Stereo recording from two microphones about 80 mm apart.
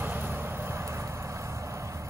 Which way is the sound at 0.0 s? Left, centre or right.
Right.